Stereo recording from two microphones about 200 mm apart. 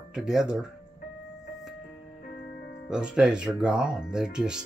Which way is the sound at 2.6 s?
55° left (ahead or behind).